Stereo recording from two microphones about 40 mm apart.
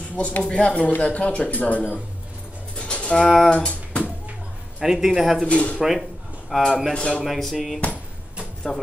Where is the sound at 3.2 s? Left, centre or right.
Centre.